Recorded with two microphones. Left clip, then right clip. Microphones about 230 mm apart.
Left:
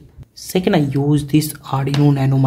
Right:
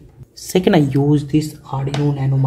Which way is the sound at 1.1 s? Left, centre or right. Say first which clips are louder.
Even; centre.